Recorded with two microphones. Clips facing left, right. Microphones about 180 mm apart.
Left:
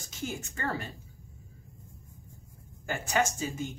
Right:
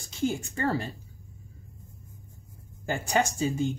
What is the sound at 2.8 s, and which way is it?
Speech, 30° right (ahead or behind).